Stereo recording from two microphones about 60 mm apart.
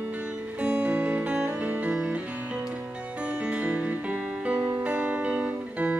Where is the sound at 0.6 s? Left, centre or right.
Right.